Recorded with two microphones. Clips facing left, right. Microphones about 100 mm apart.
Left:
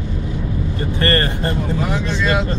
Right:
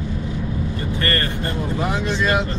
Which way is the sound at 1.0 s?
35° left (ahead or behind).